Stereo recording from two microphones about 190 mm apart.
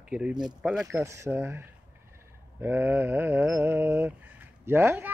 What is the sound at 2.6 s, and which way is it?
Mantra, 10° right (ahead or behind).